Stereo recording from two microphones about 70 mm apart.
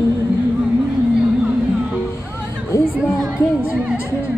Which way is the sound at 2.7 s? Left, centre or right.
Left.